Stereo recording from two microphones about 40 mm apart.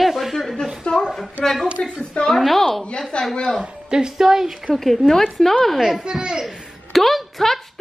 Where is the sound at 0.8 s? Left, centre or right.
Left.